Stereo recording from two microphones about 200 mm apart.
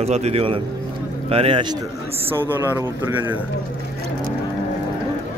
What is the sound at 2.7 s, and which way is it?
Speech, 10° right (ahead or behind).